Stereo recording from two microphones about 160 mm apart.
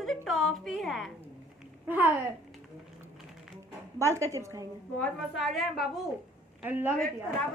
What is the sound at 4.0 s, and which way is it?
Speech, 20° right (ahead or behind).